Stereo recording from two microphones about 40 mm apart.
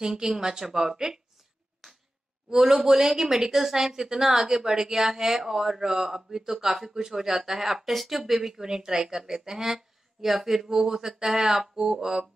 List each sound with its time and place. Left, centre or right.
0.0 s speech: centre
2.5 s speech: centre